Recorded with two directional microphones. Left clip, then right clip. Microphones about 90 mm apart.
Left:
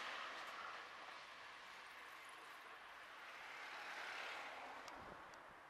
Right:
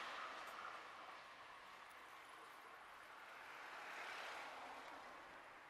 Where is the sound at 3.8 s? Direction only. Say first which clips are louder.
Left 1 dB; 40° left (ahead or behind).